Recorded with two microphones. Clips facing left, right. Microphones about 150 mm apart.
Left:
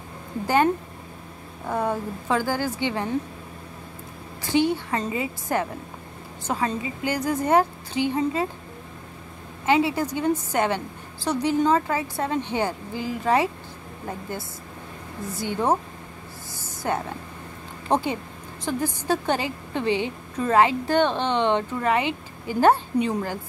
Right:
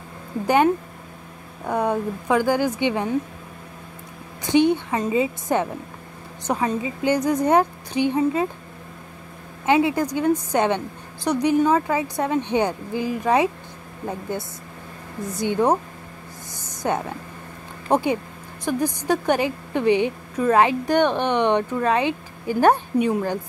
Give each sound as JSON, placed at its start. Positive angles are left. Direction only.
{"t": 1.7, "sound": "a woman's voice", "side_deg": -15}
{"t": 4.4, "sound": "a woman's voice", "side_deg": -20}
{"t": 9.7, "sound": "a woman's voice", "side_deg": -15}
{"t": 15.3, "sound": "a woman's voice", "side_deg": -20}
{"t": 16.5, "sound": "a sound", "side_deg": -20}
{"t": 17.8, "sound": "a woman's voice", "side_deg": -10}